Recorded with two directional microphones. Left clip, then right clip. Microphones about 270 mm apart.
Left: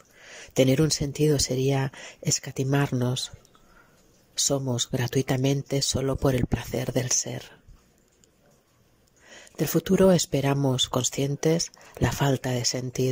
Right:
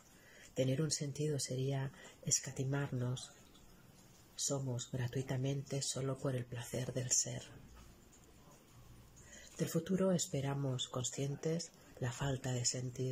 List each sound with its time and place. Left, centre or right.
0.6 s speech: left
4.5 s speech: left
9.8 s speech: left